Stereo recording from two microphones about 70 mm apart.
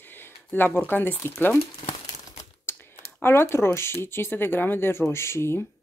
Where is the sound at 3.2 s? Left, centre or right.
Left.